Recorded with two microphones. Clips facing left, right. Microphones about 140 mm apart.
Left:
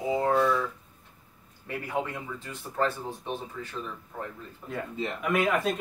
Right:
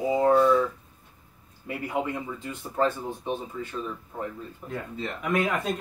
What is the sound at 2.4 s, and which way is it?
Speech, 20° right (ahead or behind).